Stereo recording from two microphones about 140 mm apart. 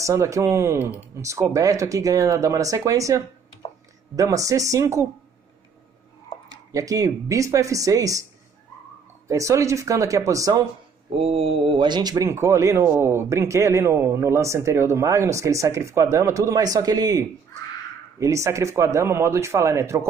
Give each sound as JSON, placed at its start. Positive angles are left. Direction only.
{"t": 0.0, "sound": "speech", "side_deg": -20}
{"t": 6.7, "sound": "speech", "side_deg": -25}
{"t": 9.3, "sound": "speech", "side_deg": -20}
{"t": 11.1, "sound": "speech", "side_deg": -45}